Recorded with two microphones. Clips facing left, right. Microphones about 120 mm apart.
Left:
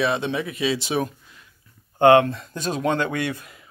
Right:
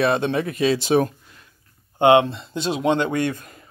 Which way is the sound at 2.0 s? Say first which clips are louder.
Even; 20° right (ahead or behind).